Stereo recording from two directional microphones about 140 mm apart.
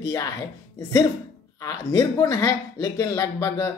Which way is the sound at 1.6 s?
25° left (ahead or behind).